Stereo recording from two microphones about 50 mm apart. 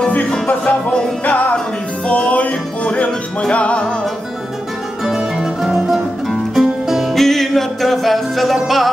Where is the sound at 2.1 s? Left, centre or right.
Left.